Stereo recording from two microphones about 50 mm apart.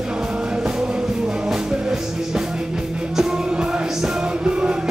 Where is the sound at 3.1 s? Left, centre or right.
Centre.